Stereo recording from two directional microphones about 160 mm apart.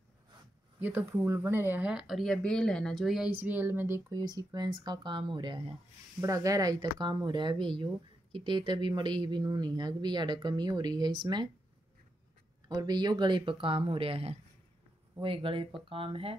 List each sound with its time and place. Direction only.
0.7 s speech: 10° right (ahead or behind); by 11.4 s 30° right (ahead or behind)
12.6 s speech: 25° right (ahead or behind)